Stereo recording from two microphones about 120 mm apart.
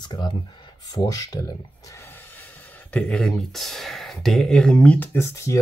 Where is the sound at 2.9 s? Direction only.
10° left (ahead or behind); by 5.6 s 25° left (ahead or behind).